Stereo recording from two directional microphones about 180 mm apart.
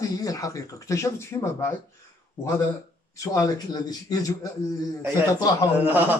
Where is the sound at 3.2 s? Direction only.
20° left (ahead or behind).